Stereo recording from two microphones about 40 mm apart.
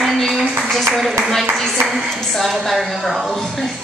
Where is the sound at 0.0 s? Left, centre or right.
Centre.